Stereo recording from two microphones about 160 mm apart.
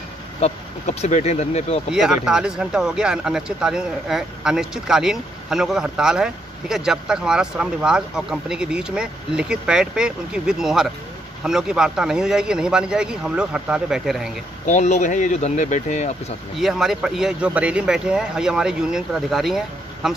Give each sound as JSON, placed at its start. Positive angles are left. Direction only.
{"t": 0.4, "sound": "speech", "side_deg": 45}
{"t": 1.9, "sound": "speech", "side_deg": -5}
{"t": 14.7, "sound": "speech", "side_deg": 45}
{"t": 16.5, "sound": "speech", "side_deg": 0}